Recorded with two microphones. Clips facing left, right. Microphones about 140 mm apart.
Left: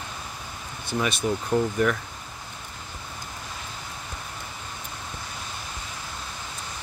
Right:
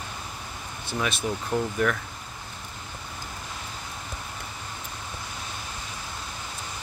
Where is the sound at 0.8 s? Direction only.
Centre (ahead or behind).